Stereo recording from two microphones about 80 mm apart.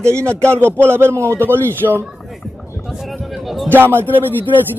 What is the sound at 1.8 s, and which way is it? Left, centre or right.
Speech, right.